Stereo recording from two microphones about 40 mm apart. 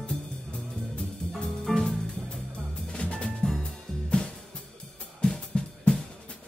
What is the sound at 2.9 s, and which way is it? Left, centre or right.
Music, left.